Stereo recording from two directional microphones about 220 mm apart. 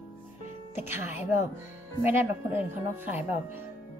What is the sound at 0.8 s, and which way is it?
Speech, 10° right (ahead or behind).